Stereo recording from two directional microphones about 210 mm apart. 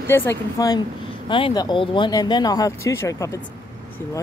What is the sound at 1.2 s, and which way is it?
Speech, 25° left (ahead or behind).